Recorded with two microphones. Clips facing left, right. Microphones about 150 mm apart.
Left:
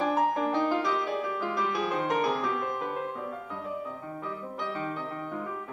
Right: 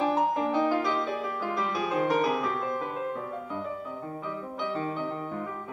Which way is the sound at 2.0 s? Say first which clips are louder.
Right 3 dB; 5° right (ahead or behind).